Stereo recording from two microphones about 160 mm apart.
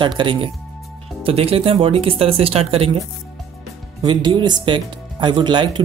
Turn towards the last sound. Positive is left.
turn(degrees=-30)  # may be behind; listen again after turning